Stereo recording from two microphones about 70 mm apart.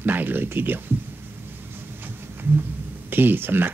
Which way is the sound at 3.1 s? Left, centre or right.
Right.